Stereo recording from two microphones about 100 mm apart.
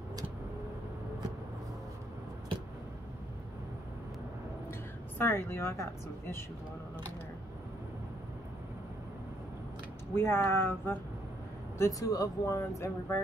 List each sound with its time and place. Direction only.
5.2 s a woman's voice: 25° left (ahead or behind)
10.1 s a woman's voice: 25° left (ahead or behind)
11.8 s speech: 35° left (ahead or behind)